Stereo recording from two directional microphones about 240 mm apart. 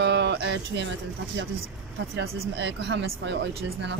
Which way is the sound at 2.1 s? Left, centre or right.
Right.